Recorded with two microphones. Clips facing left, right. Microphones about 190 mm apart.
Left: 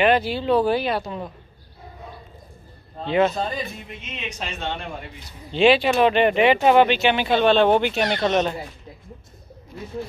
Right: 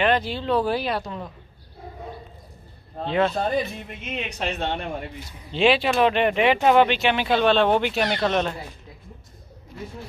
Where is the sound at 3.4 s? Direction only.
50° right (ahead or behind).